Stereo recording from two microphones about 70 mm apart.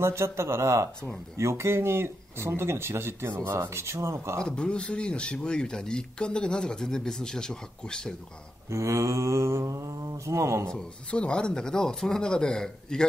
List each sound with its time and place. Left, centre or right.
0.0 s speech: right
4.4 s speech: centre
8.6 s mantra: right
10.7 s speech: centre